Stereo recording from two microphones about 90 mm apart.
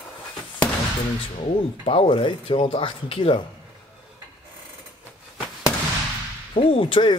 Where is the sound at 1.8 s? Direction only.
85° left.